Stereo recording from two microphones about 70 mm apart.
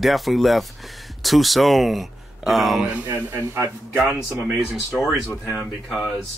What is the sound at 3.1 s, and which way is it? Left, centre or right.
Speech, right.